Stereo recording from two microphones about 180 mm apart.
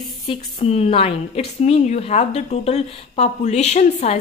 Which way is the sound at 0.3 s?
35° left (ahead or behind).